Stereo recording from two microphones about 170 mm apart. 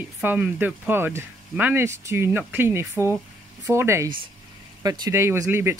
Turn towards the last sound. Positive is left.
turn(degrees=-15)  # may be behind; listen again after turning